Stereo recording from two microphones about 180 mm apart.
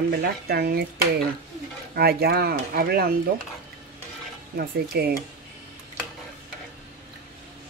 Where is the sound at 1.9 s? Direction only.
60° right (ahead or behind).